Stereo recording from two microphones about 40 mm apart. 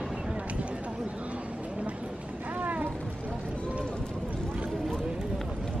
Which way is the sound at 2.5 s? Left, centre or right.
Right.